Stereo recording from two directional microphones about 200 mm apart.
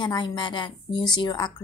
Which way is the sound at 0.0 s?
20° left (ahead or behind).